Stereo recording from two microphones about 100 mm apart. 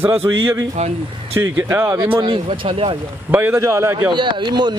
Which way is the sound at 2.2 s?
65° right (ahead or behind).